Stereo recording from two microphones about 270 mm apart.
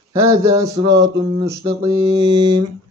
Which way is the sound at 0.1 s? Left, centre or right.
Centre.